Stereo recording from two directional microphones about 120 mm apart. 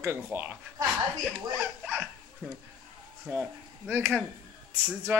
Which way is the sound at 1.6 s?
10° right (ahead or behind).